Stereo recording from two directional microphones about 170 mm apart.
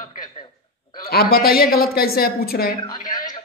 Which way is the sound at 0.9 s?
65° left (ahead or behind).